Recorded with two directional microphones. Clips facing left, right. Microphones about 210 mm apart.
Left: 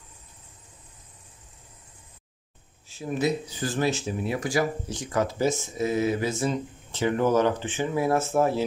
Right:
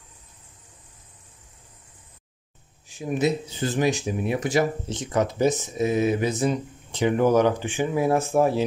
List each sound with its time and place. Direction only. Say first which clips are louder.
2.9 s speech: right 2 dB; 15° right (ahead or behind)